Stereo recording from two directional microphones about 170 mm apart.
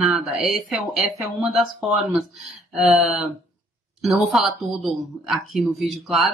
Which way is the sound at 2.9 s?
Centre (ahead or behind).